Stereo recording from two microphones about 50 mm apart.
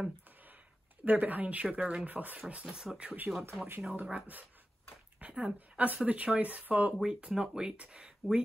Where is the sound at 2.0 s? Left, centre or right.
Right.